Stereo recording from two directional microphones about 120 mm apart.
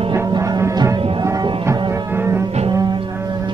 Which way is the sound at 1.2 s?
30° right (ahead or behind).